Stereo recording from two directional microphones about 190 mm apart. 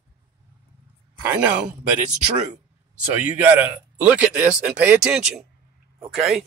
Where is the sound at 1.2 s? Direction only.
10° right (ahead or behind).